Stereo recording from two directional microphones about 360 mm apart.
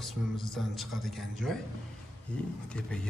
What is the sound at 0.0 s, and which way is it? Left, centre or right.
Speech, centre.